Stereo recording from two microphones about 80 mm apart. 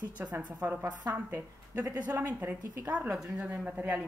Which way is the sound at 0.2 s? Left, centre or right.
Centre.